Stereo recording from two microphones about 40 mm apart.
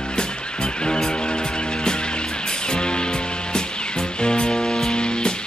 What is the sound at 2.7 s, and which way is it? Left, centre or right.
Music, left.